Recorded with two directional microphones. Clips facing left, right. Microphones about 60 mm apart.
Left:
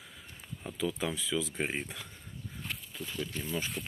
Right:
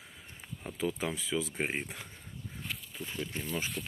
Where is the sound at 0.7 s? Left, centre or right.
Right.